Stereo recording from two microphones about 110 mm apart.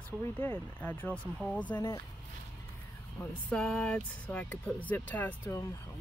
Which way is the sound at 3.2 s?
10° left (ahead or behind).